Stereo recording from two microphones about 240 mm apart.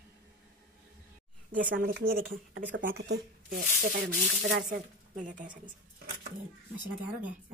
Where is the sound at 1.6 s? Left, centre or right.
Right.